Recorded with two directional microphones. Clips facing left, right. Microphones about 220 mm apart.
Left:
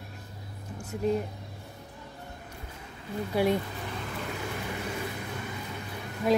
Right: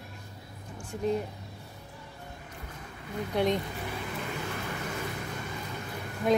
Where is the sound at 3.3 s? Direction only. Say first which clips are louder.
Left 2 dB; 5° left (ahead or behind).